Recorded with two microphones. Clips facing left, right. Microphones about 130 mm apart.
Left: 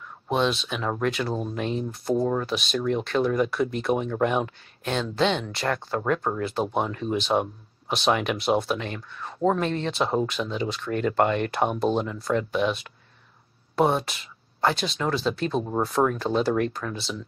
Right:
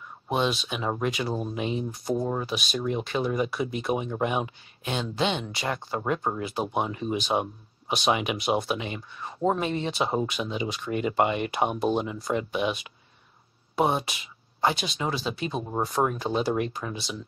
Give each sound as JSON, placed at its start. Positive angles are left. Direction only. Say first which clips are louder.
{"t": 0.3, "sound": "speech", "louder": "left 2 dB", "side_deg": -5}